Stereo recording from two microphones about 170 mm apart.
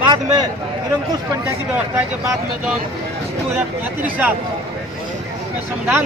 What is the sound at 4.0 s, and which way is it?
Speech, 10° right (ahead or behind).